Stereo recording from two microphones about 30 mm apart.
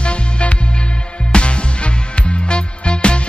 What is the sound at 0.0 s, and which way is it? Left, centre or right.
Music, left.